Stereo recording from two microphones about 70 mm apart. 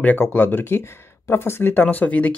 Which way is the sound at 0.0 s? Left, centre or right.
Left.